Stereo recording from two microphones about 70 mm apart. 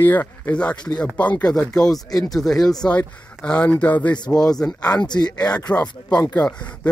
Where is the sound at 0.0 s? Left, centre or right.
Left.